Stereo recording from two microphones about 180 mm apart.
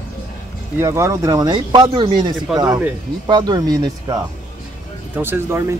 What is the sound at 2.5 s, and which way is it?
Speech, centre (ahead or behind).